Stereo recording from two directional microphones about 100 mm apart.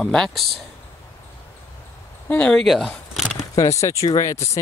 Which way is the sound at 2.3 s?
15° left (ahead or behind).